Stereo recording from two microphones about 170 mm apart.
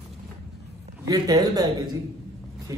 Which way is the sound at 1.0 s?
20° right (ahead or behind).